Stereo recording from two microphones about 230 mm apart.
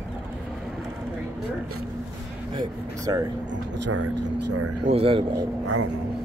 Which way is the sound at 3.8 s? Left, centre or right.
Right.